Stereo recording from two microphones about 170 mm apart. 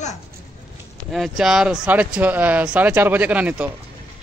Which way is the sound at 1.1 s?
Centre (ahead or behind).